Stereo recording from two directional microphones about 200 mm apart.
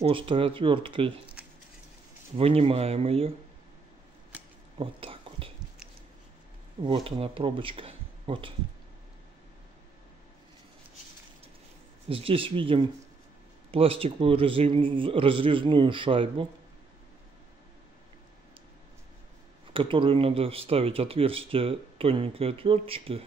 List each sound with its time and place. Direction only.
0.0 s speech: 25° right (ahead or behind)
2.3 s speech: 30° right (ahead or behind)
4.7 s whispering: 25° right (ahead or behind)
6.8 s speech: 25° right (ahead or behind)
12.1 s speech: 25° right (ahead or behind)
19.7 s speech: 25° right (ahead or behind)